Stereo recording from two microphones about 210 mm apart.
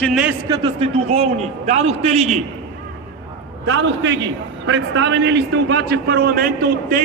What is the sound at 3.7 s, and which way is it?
A man's voice, 60° right (ahead or behind).